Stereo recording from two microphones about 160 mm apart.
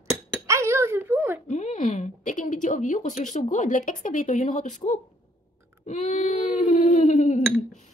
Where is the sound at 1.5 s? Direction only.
50° left (ahead or behind).